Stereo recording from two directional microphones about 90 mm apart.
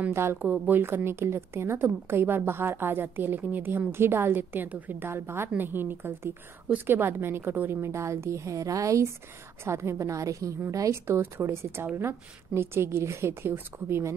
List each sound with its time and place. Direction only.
0.1 s a woman's voice: 30° right (ahead or behind)
11.1 s a woman's voice: 25° right (ahead or behind)